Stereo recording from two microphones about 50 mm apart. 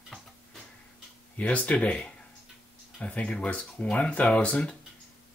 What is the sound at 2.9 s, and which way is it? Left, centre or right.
Speech, left.